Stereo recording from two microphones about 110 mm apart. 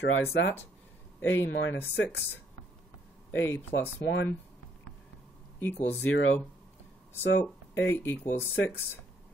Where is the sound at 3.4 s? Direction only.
20° left (ahead or behind).